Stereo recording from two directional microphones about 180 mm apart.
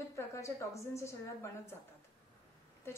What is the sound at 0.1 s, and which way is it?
A woman's voice, 15° left (ahead or behind).